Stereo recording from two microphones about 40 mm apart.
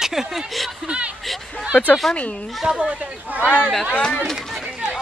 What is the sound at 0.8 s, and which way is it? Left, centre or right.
Speech, right.